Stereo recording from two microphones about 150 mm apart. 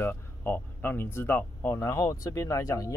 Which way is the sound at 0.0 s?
15° left (ahead or behind).